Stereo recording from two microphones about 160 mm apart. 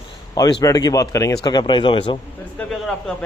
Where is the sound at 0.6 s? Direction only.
20° left (ahead or behind).